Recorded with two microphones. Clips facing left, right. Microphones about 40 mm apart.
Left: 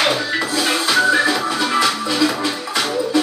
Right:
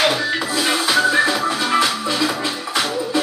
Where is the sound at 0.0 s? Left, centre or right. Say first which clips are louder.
Even; centre.